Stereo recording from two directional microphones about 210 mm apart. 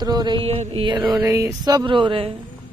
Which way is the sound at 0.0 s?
20° right (ahead or behind).